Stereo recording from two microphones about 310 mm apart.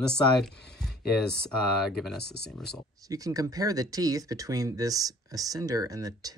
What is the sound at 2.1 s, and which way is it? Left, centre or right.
Speech, left.